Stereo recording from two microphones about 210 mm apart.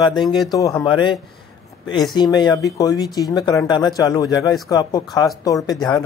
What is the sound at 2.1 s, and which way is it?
Speech, 20° left (ahead or behind).